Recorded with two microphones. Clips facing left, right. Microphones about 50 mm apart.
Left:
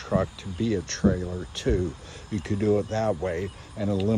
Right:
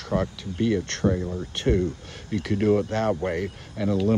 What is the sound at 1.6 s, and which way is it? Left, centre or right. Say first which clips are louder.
Speech: right 3 dB; right.